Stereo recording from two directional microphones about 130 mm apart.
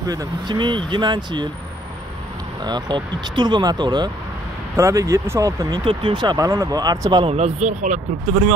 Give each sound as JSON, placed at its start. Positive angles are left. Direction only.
{"t": 0.1, "sound": "speech", "side_deg": -30}
{"t": 2.6, "sound": "speech", "side_deg": -35}
{"t": 5.9, "sound": "speech", "side_deg": -40}
{"t": 7.2, "sound": "speech", "side_deg": -55}